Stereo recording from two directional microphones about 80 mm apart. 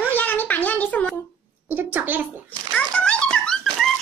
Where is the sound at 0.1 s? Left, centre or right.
Left.